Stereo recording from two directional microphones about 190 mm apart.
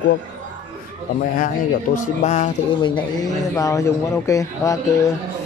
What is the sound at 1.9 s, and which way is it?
Speech, 40° left (ahead or behind).